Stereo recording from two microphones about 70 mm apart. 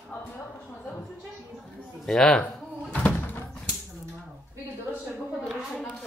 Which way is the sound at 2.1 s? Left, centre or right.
Centre.